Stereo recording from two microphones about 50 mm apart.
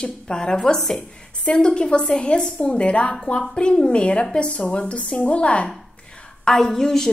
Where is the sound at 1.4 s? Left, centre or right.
Centre.